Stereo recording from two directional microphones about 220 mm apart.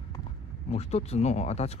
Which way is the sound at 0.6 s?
30° left (ahead or behind).